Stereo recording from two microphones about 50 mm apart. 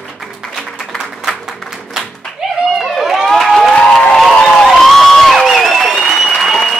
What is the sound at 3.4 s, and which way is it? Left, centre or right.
Crowd, centre.